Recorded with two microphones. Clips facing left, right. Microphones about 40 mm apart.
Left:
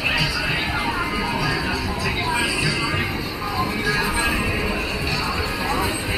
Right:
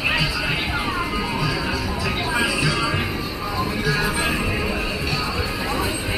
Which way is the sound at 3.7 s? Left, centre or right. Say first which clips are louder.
Right 1 dB; left.